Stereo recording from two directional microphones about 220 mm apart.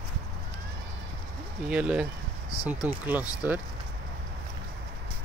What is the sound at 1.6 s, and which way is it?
Speech, 5° right (ahead or behind).